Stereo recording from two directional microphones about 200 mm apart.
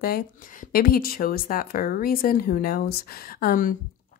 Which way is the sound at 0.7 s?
45° left (ahead or behind).